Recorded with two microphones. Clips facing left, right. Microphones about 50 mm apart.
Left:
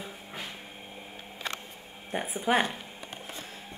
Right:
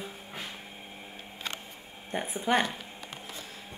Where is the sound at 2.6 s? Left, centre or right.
Left.